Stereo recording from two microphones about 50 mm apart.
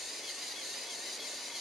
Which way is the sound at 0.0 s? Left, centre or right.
Centre.